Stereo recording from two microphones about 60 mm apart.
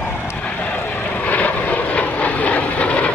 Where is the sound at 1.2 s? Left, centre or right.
Left.